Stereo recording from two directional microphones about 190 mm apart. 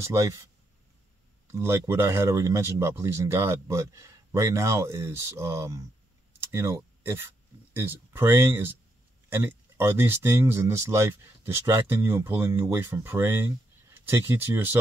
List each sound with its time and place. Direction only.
0.0 s speech: 15° right (ahead or behind)
1.5 s speech: 15° right (ahead or behind)